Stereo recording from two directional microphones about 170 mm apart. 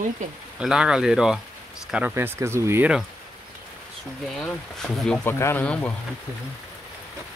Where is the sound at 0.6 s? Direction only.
5° right (ahead or behind).